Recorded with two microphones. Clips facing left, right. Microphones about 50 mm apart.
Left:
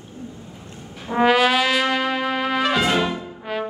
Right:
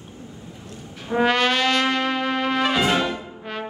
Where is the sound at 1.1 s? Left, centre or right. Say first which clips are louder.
Left 3 dB; centre.